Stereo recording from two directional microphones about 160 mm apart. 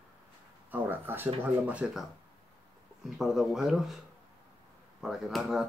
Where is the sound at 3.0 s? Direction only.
Centre (ahead or behind).